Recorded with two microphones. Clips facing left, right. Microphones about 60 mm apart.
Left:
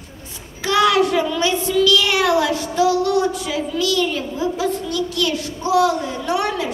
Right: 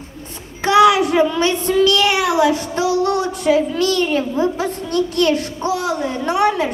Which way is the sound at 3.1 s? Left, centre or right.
Right.